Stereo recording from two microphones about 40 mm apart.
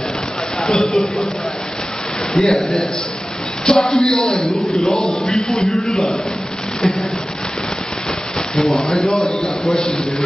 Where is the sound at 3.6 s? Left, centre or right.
Centre.